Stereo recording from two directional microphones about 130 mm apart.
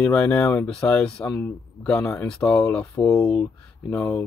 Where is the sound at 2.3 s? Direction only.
5° left (ahead or behind).